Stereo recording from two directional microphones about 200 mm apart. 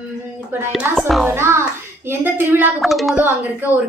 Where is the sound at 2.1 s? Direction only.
10° right (ahead or behind).